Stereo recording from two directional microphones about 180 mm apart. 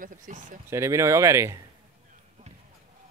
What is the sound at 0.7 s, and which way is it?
Speech, 15° right (ahead or behind).